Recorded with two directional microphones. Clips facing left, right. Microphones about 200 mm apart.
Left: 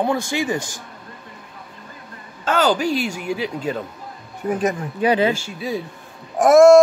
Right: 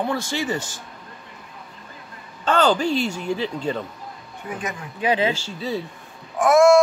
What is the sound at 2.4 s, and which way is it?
Speech, 5° left (ahead or behind).